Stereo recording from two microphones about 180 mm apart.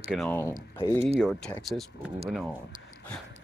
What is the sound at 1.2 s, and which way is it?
Speech, centre (ahead or behind).